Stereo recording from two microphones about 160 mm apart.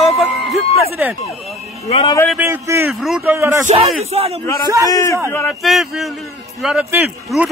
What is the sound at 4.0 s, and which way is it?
Speech, 40° right (ahead or behind).